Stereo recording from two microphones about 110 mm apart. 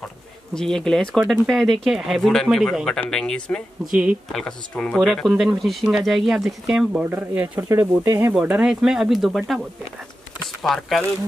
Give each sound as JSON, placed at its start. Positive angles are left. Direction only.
{"t": 0.6, "sound": "speech", "side_deg": 5}
{"t": 3.8, "sound": "speech", "side_deg": -15}
{"t": 4.3, "sound": "speech", "side_deg": 5}
{"t": 7.1, "sound": "speech", "side_deg": -15}
{"t": 8.3, "sound": "speech", "side_deg": -10}